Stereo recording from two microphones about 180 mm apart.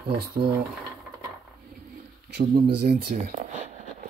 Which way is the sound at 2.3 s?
60° right (ahead or behind).